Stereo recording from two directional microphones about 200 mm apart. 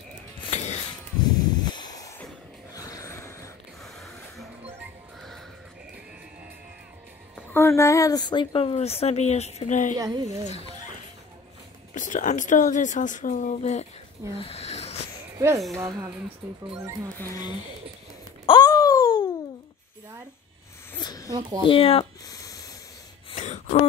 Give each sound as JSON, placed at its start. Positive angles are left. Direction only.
{"t": 0.5, "sound": "mechanisms", "side_deg": 35}
{"t": 1.2, "sound": "a sound", "side_deg": 20}
{"t": 3.8, "sound": "a sound", "side_deg": 0}
{"t": 7.5, "sound": "speech", "side_deg": 15}
{"t": 9.9, "sound": "speech", "side_deg": -20}
{"t": 11.9, "sound": "speech", "side_deg": 40}
{"t": 14.4, "sound": "wheeze", "side_deg": 30}
{"t": 15.3, "sound": "speech", "side_deg": -15}
{"t": 16.7, "sound": "speech", "side_deg": -15}
{"t": 18.4, "sound": "a sound", "side_deg": 20}
{"t": 21.0, "sound": "a sound", "side_deg": 20}
{"t": 21.3, "sound": "speech", "side_deg": -20}
{"t": 21.6, "sound": "speech", "side_deg": 30}
{"t": 23.3, "sound": "gasp", "side_deg": 35}